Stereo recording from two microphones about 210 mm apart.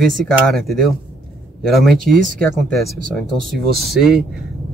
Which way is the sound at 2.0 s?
40° right (ahead or behind).